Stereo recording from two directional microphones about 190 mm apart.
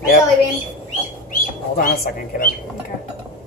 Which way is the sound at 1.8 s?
50° left (ahead or behind).